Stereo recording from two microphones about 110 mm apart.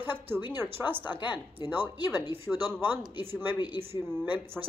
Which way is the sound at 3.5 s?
40° left (ahead or behind).